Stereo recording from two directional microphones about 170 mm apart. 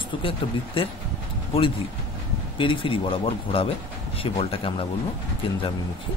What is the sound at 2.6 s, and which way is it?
Speech, 30° left (ahead or behind).